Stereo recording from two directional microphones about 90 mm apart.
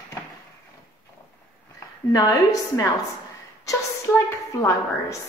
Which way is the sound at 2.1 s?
40° left (ahead or behind).